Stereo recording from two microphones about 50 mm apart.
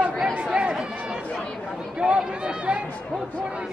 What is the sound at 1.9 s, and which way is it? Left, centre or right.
Speech, right.